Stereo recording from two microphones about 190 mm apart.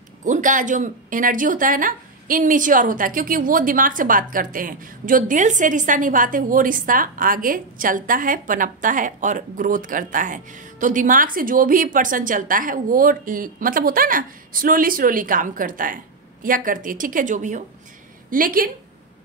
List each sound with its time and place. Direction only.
0.2 s speech: 40° right (ahead or behind)